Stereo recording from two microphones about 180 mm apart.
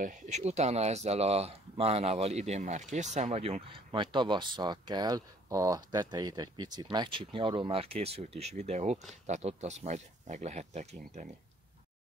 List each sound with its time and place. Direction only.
0.0 s speech: 40° right (ahead or behind)